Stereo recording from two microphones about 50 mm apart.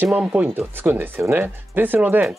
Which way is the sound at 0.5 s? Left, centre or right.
Right.